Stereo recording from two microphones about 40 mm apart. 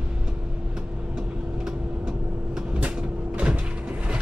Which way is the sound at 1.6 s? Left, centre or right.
Right.